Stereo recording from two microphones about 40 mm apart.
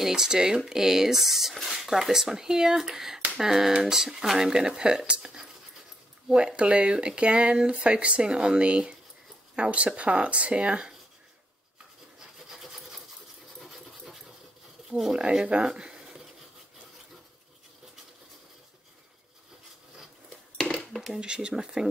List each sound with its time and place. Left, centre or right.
0.0 s speech: centre; by 10.9 s right
12.2 s rub: centre
12.6 s sewing machine: centre
13.6 s dog: centre
14.9 s speech: centre
15.1 s speech: right
20.5 s dishes: centre
21.2 s speech: right